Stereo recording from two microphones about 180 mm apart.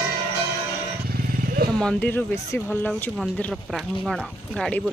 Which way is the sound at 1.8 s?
10° left (ahead or behind).